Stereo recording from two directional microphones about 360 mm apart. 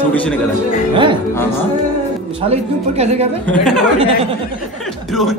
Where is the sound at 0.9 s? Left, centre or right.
Centre.